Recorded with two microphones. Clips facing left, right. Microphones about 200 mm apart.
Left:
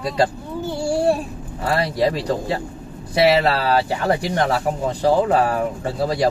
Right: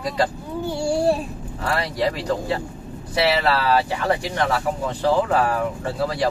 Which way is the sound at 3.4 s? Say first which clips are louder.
Left 2 dB; 40° left (ahead or behind).